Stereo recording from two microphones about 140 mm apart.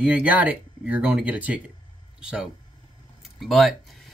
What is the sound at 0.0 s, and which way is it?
Speech, 10° right (ahead or behind).